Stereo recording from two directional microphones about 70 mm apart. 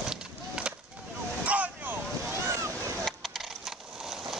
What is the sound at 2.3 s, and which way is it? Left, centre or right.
Waves, right.